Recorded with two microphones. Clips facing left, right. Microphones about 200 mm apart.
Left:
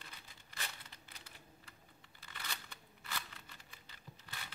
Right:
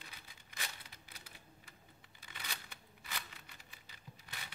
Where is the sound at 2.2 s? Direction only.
15° right (ahead or behind).